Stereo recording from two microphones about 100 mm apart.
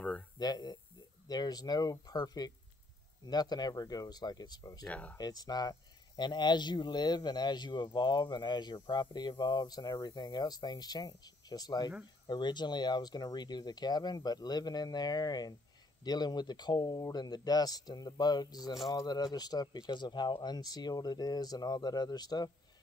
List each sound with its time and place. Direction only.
0.4 s speech: 45° left (ahead or behind)
4.8 s speech: 15° left (ahead or behind)
5.1 s speech: 40° left (ahead or behind)